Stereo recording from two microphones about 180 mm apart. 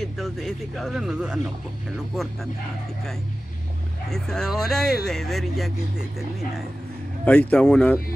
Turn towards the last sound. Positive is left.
turn(degrees=5)  # may be behind; listen again after turning